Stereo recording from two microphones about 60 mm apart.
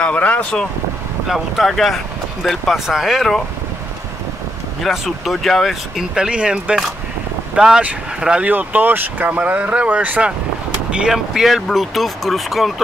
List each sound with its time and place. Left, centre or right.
0.0 s speech: left
1.2 s speech: centre
4.8 s speech: centre
6.1 s speech: centre
8.5 s speech: right; by 12.8 s centre